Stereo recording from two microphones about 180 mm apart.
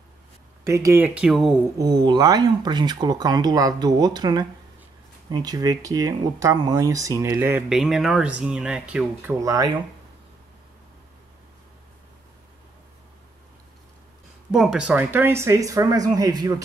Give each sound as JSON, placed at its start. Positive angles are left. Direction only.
{"t": 0.7, "sound": "speech", "side_deg": -15}
{"t": 1.8, "sound": "speech", "side_deg": -20}
{"t": 14.5, "sound": "speech", "side_deg": 0}